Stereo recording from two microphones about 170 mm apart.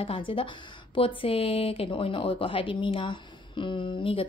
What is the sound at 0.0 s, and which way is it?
Speech, 30° left (ahead or behind).